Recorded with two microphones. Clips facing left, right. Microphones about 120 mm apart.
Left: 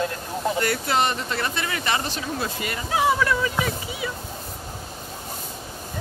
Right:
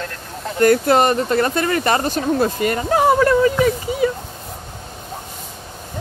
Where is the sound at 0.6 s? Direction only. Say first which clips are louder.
Right 12 dB; 45° right (ahead or behind).